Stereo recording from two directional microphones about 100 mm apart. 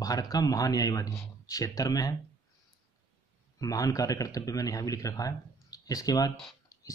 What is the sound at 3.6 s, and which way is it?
Speech, 35° left (ahead or behind).